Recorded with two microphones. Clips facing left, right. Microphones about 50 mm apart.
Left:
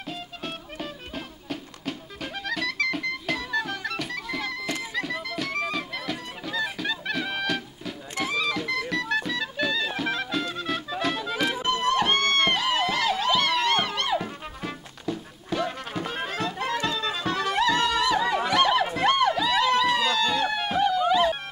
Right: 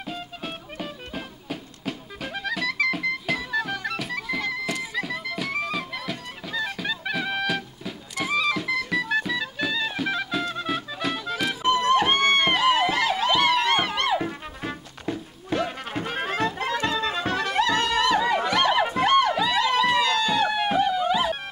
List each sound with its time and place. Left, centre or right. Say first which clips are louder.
0.0 s music: right 1 dB; centre
11.6 s music: right 6 dB; centre
14.6 s music: right 2 dB; right
15.9 s music: right 2 dB; right
18.4 s a sound: even; centre
18.9 s music: right 2 dB; centre